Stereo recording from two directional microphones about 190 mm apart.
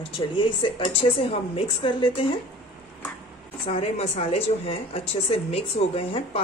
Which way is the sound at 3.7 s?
30° left (ahead or behind).